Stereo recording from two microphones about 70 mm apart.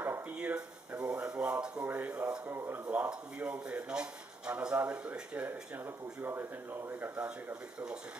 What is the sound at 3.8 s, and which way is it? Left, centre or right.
Speech, centre.